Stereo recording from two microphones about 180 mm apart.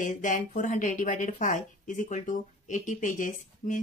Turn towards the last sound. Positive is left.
turn(degrees=45)  # may be behind; listen again after turning